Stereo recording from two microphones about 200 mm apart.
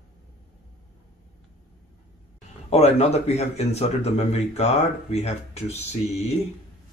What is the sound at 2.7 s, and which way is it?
Speech, 35° left (ahead or behind).